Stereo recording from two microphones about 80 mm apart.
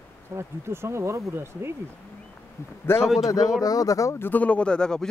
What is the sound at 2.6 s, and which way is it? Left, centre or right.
Speech, left.